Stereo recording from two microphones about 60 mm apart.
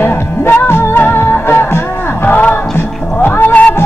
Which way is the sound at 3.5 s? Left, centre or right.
Left.